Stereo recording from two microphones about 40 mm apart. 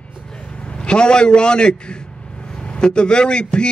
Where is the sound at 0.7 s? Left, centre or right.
Left.